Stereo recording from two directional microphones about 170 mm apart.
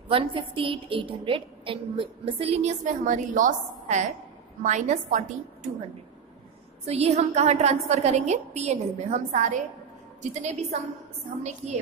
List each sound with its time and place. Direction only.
0.1 s a woman's voice: 30° right (ahead or behind)
6.9 s a woman's voice: 40° right (ahead or behind)